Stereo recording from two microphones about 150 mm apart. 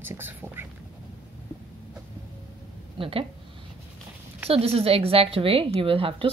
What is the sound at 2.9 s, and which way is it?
Speech, 35° right (ahead or behind).